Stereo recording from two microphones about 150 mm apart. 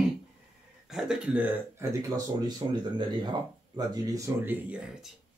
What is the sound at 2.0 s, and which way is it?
Speech, 25° right (ahead or behind).